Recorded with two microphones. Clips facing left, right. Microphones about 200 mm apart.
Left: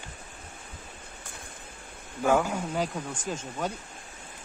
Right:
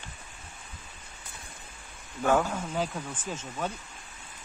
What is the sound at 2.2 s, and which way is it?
Speech, 10° left (ahead or behind).